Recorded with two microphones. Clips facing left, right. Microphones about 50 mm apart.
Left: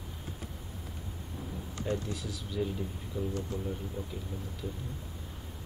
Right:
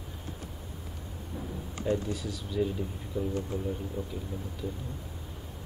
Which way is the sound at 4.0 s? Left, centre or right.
Centre.